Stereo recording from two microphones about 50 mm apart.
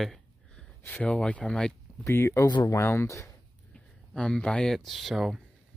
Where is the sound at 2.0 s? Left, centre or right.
Left.